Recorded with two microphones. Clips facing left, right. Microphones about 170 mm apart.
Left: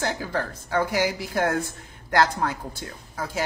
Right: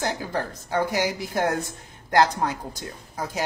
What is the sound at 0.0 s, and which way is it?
A woman's voice, 15° right (ahead or behind).